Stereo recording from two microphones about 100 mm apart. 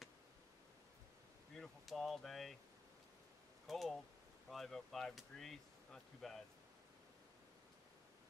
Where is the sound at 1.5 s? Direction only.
5° left (ahead or behind).